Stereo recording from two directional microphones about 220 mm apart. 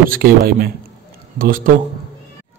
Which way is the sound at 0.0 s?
40° right (ahead or behind).